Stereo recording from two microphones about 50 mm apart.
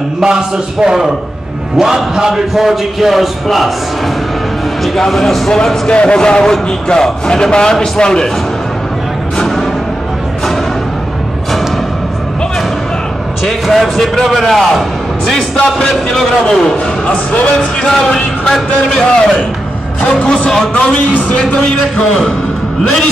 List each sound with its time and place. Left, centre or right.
0.2 s a man's voice: centre
4.8 s a man's voice: centre
5.5 s a man's voice: centre
13.4 s a man's voice: centre
17.1 s speech: left
17.8 s a man's voice: centre